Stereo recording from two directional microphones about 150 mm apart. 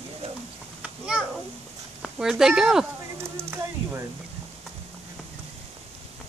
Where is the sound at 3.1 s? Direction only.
15° right (ahead or behind).